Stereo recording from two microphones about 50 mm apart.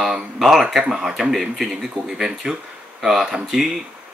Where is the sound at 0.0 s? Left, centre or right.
Centre.